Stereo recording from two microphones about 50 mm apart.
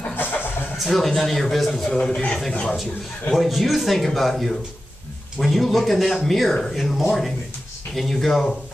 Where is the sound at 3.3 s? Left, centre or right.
Centre.